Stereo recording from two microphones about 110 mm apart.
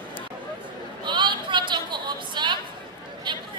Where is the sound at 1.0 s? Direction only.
45° right (ahead or behind).